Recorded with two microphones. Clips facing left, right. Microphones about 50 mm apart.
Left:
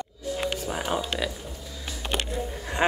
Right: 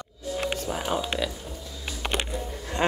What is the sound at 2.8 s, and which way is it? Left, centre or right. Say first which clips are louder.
Speech: left 2 dB; centre.